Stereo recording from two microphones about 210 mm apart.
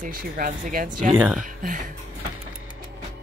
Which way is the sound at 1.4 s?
40° right (ahead or behind).